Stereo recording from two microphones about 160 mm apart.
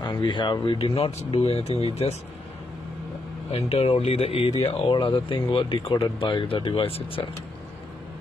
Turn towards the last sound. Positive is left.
turn(degrees=35)  # may be behind; listen again after turning